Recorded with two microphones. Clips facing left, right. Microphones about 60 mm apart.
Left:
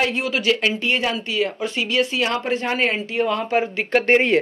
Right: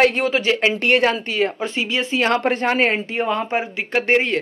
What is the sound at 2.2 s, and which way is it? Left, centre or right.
Speech, right.